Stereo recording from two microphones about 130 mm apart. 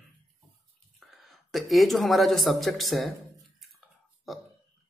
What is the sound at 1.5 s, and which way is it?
Speech, centre (ahead or behind).